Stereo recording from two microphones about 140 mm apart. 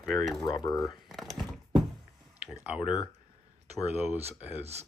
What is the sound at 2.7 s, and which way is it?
Speech, 5° right (ahead or behind).